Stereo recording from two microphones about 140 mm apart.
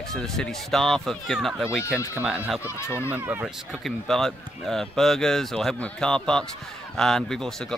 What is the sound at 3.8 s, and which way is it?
Speech, centre (ahead or behind).